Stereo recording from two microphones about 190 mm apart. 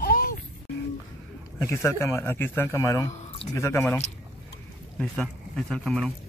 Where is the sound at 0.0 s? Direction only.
50° left (ahead or behind).